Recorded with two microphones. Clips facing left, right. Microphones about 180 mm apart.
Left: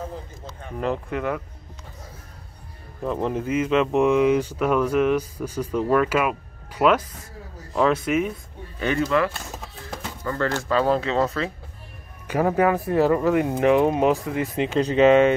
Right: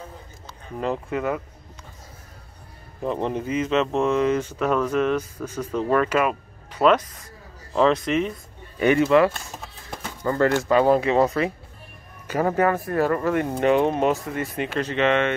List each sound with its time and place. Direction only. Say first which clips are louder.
0.7 s speech: even; centre (ahead or behind)
3.0 s speech: even; centre (ahead or behind)
8.7 s speech: right 5 dB; 15° right (ahead or behind)
12.3 s speech: left 1 dB; 5° left (ahead or behind)
15.0 s speech: left 6 dB; 35° left (ahead or behind)